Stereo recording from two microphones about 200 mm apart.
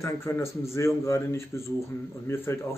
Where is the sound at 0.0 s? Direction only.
15° left (ahead or behind).